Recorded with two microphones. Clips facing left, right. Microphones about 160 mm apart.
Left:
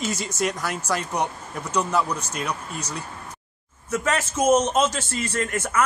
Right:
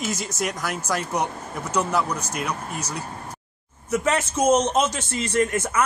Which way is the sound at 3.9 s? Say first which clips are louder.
Right 2 dB; 15° right (ahead or behind).